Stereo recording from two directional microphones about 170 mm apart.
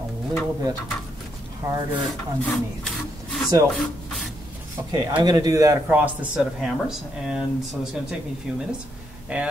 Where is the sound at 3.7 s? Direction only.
Centre (ahead or behind).